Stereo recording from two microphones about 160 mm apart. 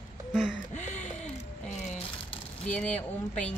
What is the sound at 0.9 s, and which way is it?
Music, 50° left (ahead or behind).